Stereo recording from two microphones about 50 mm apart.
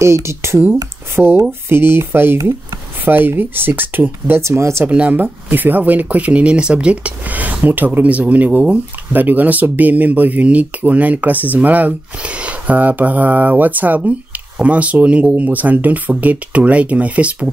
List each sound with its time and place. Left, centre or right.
0.0 s speech: right
4.4 s speech: right
4.8 s speech: right
15.3 s speech: right